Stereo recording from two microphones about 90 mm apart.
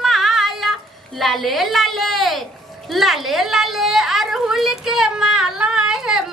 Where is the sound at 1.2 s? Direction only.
Centre (ahead or behind).